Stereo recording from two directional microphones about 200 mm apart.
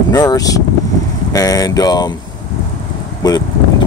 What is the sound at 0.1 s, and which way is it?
Speech, 20° left (ahead or behind).